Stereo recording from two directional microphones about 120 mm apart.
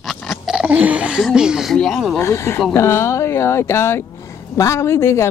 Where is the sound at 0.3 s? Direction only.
5° right (ahead or behind).